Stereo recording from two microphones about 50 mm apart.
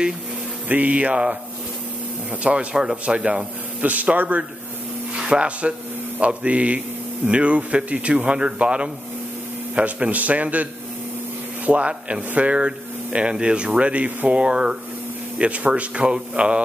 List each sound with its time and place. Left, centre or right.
0.7 s speech: right
2.4 s speech: right
2.7 s a man's voice: centre